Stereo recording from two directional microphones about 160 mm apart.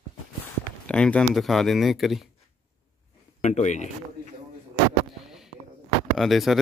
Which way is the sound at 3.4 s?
45° left (ahead or behind).